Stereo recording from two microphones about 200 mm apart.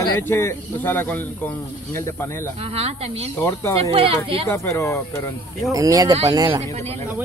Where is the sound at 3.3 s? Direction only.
15° left (ahead or behind).